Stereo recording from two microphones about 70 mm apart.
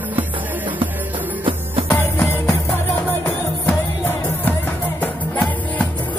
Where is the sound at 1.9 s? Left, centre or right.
Left.